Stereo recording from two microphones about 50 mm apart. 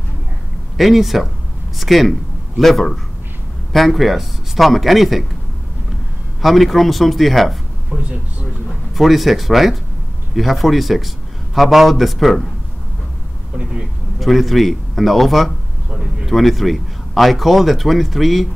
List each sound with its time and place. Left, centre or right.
0.7 s a man's voice: centre
6.4 s a man's voice: centre
7.9 s speech: right
8.9 s a man's voice: centre
14.2 s a man's voice: centre